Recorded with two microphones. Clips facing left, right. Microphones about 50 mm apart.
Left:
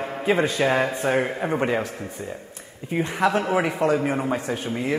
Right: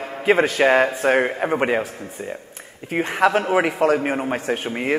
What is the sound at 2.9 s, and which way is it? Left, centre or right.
Speech, right.